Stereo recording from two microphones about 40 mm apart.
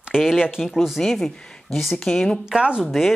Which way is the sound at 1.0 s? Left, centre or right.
Centre.